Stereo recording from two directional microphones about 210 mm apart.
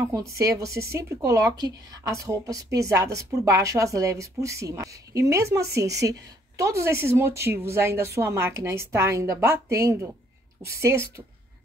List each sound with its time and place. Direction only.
0.0 s speech: 15° right (ahead or behind)